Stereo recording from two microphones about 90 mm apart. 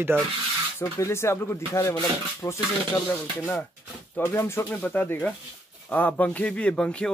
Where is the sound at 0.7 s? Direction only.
30° left (ahead or behind).